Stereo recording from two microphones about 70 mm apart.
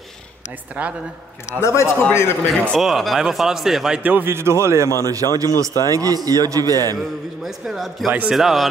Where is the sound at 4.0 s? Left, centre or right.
Right.